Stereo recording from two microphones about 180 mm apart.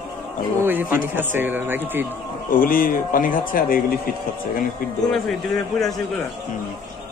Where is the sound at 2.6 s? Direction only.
50° left (ahead or behind).